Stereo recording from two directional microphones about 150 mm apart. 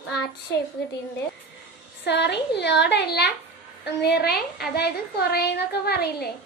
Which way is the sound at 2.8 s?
90° left.